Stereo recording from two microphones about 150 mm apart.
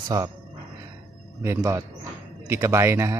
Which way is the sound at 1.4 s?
15° right (ahead or behind).